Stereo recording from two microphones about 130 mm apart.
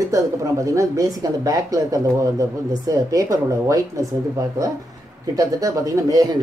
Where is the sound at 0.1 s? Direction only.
25° right (ahead or behind).